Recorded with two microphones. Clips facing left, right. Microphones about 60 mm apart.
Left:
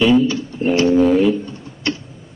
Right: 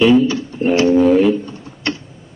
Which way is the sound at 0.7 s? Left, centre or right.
Right.